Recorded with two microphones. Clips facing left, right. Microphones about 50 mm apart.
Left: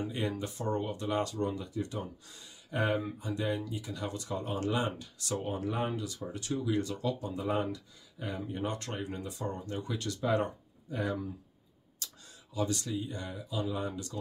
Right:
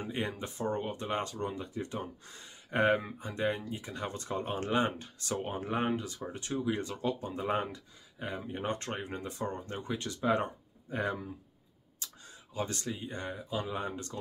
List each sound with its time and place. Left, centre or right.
0.0 s speech: right
7.6 s speech: right